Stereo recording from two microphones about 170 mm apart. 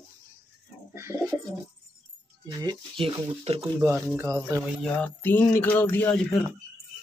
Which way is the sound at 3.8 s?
15° right (ahead or behind).